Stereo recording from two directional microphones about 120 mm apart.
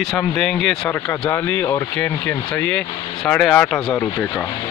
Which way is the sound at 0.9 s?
20° left (ahead or behind).